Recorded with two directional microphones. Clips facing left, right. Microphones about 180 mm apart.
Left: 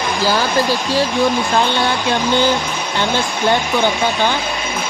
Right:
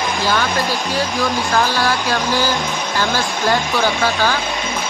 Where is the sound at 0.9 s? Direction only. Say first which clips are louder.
Left 5 dB; 30° left (ahead or behind).